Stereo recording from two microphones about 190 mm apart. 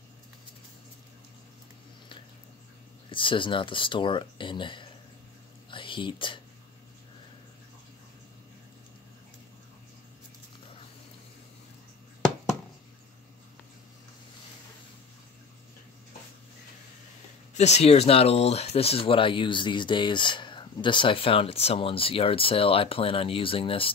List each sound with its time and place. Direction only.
3.1 s speech: 25° left (ahead or behind)
5.7 s whispering: 25° left (ahead or behind)
17.6 s speech: 35° left (ahead or behind)